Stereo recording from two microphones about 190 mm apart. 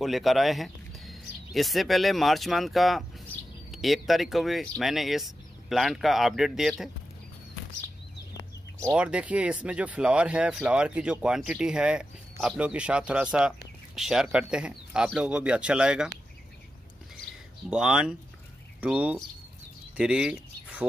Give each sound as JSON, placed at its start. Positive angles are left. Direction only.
{"t": 0.0, "sound": "speech", "side_deg": 0}
{"t": 8.7, "sound": "speech", "side_deg": -10}
{"t": 17.6, "sound": "speech", "side_deg": -5}